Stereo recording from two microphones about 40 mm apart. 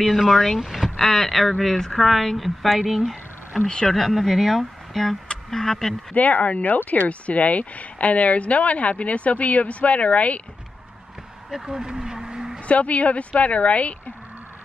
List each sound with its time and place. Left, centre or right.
0.0 s a woman's voice: centre
1.0 s a woman's voice: centre
3.6 s speech: left
3.9 s a woman's voice: centre
6.1 s speech: left
7.1 s speech: left
11.5 s a sound: centre
12.5 s speech: left